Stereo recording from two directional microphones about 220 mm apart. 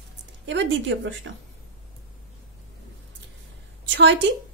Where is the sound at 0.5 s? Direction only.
55° right (ahead or behind).